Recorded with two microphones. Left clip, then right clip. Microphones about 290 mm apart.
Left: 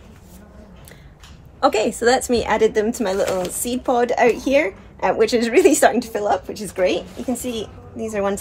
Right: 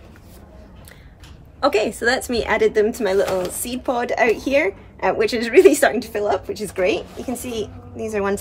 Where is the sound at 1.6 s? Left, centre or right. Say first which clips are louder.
Left 1 dB; centre.